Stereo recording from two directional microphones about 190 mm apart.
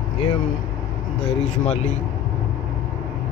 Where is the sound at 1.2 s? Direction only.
35° left (ahead or behind).